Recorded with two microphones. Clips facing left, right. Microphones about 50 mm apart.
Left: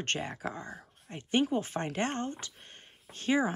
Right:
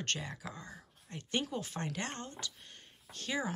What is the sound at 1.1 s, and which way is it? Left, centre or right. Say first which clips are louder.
Speech: left 8 dB; left.